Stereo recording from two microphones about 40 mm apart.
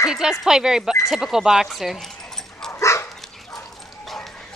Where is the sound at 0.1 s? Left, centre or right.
Centre.